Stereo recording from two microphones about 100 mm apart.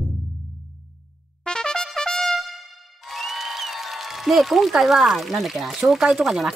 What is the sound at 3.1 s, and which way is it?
Speech, centre (ahead or behind).